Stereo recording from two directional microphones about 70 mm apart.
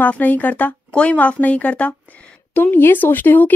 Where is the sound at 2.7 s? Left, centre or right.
Left.